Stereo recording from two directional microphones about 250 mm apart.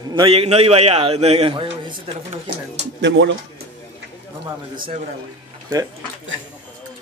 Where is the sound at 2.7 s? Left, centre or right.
Right.